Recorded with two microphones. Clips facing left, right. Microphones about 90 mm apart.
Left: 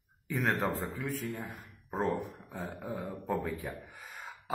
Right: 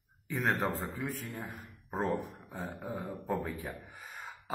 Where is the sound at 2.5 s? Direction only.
Centre (ahead or behind).